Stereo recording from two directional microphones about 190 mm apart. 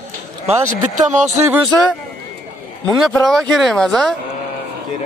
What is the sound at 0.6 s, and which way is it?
Speech, 40° right (ahead or behind).